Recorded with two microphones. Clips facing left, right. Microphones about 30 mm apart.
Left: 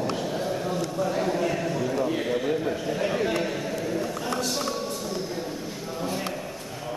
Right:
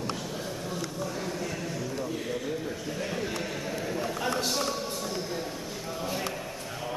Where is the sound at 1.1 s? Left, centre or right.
Left.